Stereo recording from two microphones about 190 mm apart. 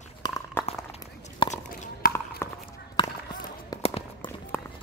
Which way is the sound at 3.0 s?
25° left (ahead or behind).